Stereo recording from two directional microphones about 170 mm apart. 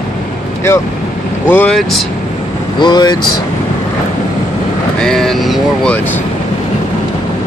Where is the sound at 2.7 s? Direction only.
25° left (ahead or behind).